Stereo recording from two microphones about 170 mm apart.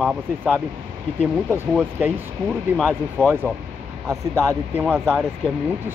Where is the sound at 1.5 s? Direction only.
10° right (ahead or behind).